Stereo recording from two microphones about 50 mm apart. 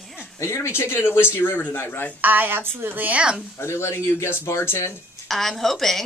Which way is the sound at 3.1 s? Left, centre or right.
Centre.